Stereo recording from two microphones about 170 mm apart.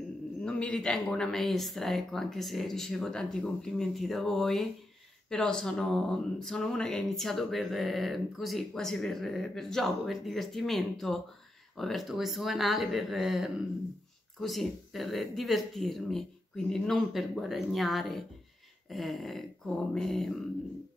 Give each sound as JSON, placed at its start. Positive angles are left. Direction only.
{"t": 0.4, "sound": "speech", "side_deg": 5}